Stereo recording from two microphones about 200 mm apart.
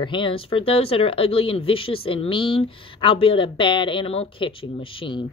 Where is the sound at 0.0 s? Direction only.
25° left (ahead or behind).